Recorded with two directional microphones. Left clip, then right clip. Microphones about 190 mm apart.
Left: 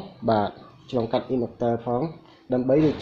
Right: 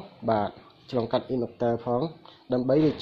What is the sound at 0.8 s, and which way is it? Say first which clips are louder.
Speech: left 2 dB; 25° right (ahead or behind).